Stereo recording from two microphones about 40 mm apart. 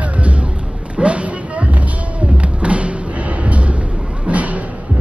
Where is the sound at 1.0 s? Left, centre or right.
Right.